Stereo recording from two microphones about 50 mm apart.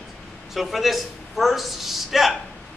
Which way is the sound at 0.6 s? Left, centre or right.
Centre.